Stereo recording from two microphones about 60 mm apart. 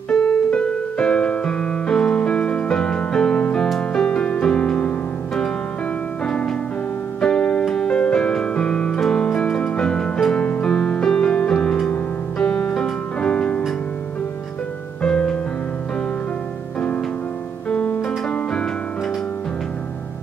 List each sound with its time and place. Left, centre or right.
0.1 s piano: centre
3.9 s music: centre
15.0 s music: centre
17.6 s music: centre